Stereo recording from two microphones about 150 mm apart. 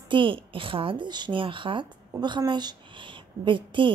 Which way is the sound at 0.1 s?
35° right (ahead or behind).